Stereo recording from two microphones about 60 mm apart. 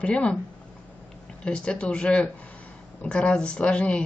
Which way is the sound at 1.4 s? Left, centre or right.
Centre.